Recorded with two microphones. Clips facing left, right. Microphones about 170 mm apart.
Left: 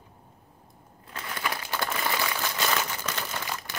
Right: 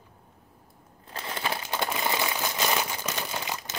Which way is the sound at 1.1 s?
25° right (ahead or behind).